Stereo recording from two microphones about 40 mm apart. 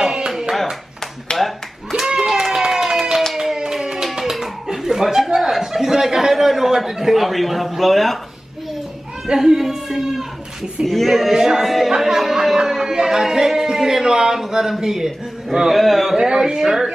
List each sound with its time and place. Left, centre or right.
0.0 s hands: centre
0.3 s hands: centre
1.3 s clapping: centre
2.0 s clapping: centre
3.3 s a sound: centre
9.3 s speech: centre
11.3 s speech: centre
11.9 s a sound: centre
15.8 s speech: centre